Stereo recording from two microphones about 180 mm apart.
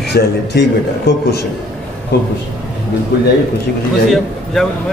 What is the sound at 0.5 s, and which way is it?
Speech, 70° left (ahead or behind).